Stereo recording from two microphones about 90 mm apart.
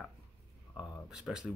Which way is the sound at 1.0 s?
5° right (ahead or behind).